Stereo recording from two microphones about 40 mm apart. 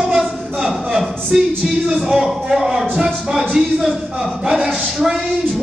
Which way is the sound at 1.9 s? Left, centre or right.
Centre.